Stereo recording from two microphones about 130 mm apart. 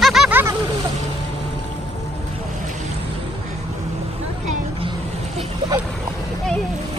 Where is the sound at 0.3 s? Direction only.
15° right (ahead or behind).